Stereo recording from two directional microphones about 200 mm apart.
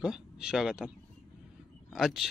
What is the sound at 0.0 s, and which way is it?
Speech, 5° right (ahead or behind).